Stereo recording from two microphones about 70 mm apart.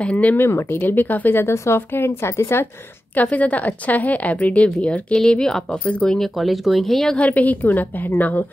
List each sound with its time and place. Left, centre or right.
0.0 s speech: centre
0.4 s speech: left
0.7 s speech: left
3.2 s a woman's voice: left
5.1 s speech: centre
6.1 s speech: centre
7.2 s a woman's voice: left